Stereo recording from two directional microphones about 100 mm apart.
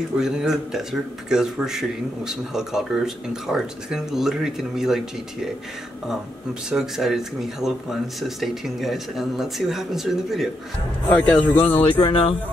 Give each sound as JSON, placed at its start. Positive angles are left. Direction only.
{"t": 0.2, "sound": "speech", "side_deg": -5}
{"t": 6.7, "sound": "speech", "side_deg": -5}
{"t": 11.1, "sound": "a man's voice", "side_deg": 15}
{"t": 11.8, "sound": "speech", "side_deg": 55}